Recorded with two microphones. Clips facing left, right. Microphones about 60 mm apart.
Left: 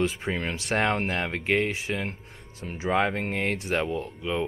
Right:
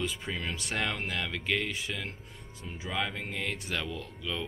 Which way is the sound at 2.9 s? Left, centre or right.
Left.